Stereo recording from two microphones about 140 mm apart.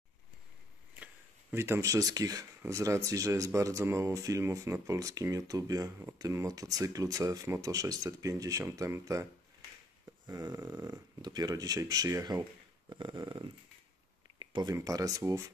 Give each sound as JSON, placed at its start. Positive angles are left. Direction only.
{"t": 0.9, "sound": "speech", "side_deg": -15}
{"t": 12.9, "sound": "a sound", "side_deg": -30}
{"t": 14.4, "sound": "speech", "side_deg": -30}